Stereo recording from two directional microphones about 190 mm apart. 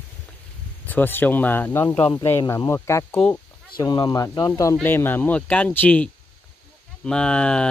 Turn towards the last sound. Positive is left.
turn(degrees=5)  # may be behind; listen again after turning